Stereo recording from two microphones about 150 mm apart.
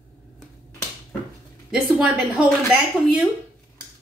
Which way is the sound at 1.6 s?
5° right (ahead or behind).